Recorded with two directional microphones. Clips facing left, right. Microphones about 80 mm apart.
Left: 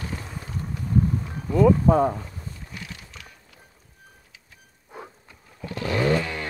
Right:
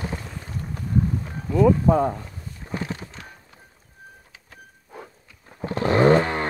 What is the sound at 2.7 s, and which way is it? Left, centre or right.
Clip-clop, right.